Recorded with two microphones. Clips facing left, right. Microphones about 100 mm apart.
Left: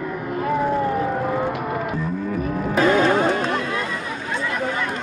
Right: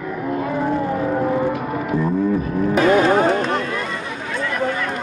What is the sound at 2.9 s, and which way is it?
Music, 10° right (ahead or behind).